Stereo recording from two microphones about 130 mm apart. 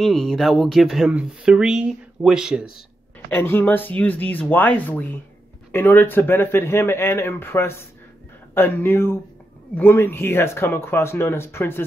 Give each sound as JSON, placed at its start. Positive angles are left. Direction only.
{"t": 0.0, "sound": "speech", "side_deg": 0}
{"t": 3.3, "sound": "speech", "side_deg": 15}